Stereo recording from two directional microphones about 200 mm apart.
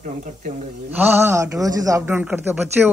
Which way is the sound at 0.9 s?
10° right (ahead or behind).